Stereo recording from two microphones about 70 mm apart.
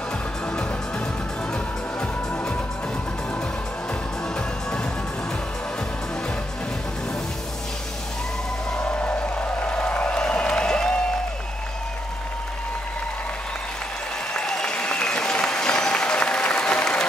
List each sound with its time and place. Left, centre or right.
1.5 s music: centre
8.7 s music: centre
14.3 s applause: centre